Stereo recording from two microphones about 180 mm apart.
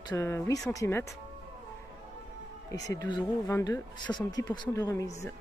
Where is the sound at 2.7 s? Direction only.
20° left (ahead or behind).